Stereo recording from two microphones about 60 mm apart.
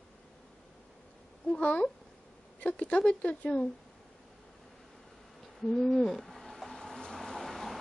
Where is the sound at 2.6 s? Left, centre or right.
Left.